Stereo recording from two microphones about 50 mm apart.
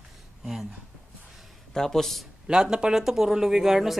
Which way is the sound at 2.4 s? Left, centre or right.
Centre.